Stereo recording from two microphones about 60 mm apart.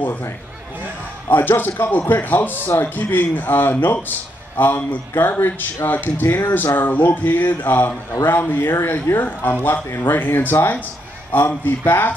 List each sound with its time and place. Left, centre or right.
0.0 s speech: left
1.3 s speech: left